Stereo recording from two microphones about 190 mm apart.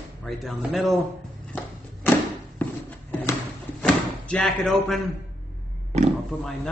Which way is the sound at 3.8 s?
5° left (ahead or behind).